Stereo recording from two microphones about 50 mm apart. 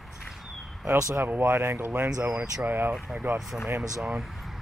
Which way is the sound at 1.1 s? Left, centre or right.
Right.